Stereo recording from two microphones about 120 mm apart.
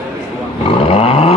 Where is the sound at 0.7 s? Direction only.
55° left (ahead or behind).